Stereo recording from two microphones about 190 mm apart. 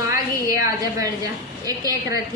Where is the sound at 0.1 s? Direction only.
15° right (ahead or behind).